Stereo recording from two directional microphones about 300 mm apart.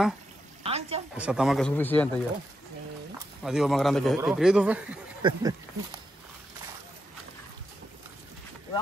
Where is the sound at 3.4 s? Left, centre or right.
Centre.